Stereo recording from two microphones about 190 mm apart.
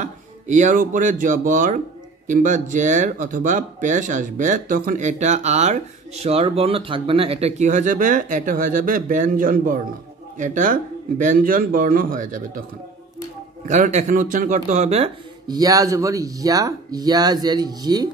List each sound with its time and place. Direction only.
0.0 s speech: 40° right (ahead or behind)
13.7 s speech: 40° right (ahead or behind)
15.4 s speech: 20° right (ahead or behind)